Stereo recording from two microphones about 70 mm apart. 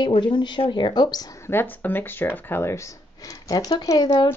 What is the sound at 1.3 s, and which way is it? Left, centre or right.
Speech, left.